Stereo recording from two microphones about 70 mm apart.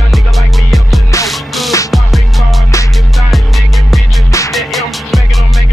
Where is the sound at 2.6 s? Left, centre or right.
Left.